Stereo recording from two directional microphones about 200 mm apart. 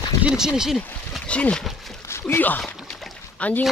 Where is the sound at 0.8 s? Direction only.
5° left (ahead or behind).